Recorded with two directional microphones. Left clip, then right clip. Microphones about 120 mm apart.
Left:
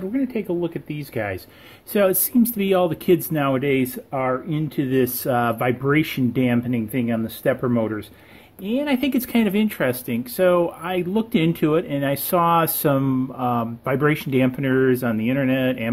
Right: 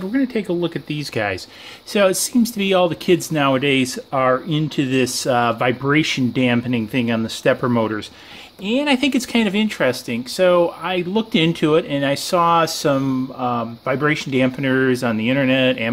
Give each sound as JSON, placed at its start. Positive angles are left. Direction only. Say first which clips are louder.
{"t": 0.1, "sound": "speech", "louder": "right 5 dB", "side_deg": -35}
{"t": 1.9, "sound": "speech", "louder": "right 3 dB", "side_deg": -10}
{"t": 8.6, "sound": "speech", "louder": "right 4 dB", "side_deg": -15}
{"t": 12.1, "sound": "speech", "louder": "right 2 dB", "side_deg": 10}